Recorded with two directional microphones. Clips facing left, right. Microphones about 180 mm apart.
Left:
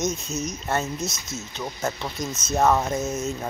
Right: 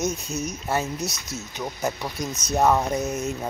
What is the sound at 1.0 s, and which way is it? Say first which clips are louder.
Speech: even; 35° right (ahead or behind).